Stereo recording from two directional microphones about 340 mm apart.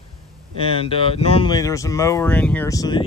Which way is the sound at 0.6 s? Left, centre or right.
Centre.